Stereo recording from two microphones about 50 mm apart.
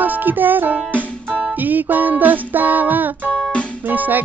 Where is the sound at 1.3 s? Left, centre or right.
Right.